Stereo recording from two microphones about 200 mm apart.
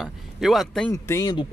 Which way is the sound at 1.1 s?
20° left (ahead or behind).